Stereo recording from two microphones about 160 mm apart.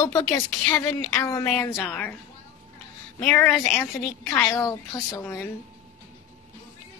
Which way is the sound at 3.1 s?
15° left (ahead or behind).